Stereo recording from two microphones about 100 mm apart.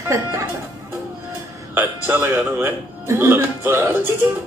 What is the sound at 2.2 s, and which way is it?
Speech, 30° right (ahead or behind).